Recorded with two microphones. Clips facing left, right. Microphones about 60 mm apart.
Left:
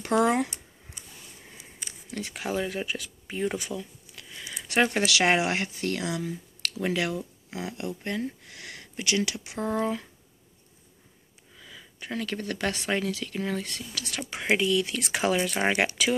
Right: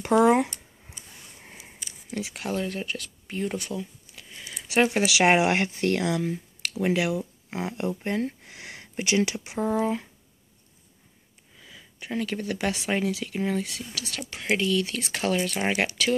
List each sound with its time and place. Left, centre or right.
0.1 s speech: centre
1.4 s a sound: right
2.3 s speech: centre
3.7 s a sound: centre
4.6 s speech: centre
5.2 s speech: right
6.6 s speech: right
7.5 s speech: right
9.6 s speech: centre
11.6 s speech: centre
14.3 s speech: centre
14.6 s speech: centre